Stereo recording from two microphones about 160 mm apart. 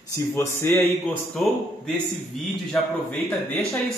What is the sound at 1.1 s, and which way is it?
A man's voice, 5° left (ahead or behind).